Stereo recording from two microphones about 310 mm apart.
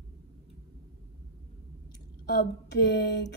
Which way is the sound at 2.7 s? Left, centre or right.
Left.